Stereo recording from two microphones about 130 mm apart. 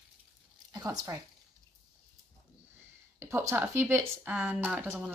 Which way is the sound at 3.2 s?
20° right (ahead or behind).